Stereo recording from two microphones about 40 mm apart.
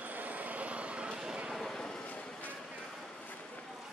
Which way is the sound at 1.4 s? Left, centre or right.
Centre.